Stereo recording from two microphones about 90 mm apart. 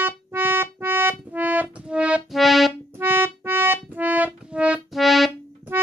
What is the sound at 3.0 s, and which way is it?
Music, 25° right (ahead or behind).